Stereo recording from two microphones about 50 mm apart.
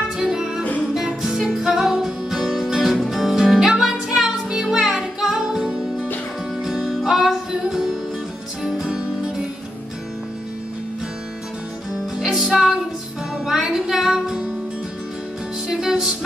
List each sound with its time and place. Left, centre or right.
0.2 s music: centre
5.6 s music: right
6.9 s music: centre
8.8 s music: centre
12.3 s music: centre
15.7 s music: centre